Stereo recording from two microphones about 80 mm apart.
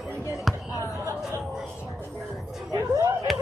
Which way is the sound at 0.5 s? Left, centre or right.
Centre.